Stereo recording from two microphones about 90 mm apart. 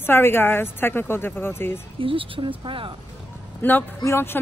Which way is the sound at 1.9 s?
80° right.